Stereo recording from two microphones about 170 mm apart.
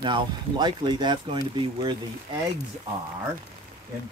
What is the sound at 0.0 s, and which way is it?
Speech, 25° right (ahead or behind).